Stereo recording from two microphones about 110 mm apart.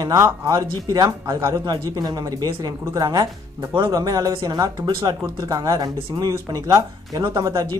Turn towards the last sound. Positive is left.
turn(degrees=-35)  # may be behind; listen again after turning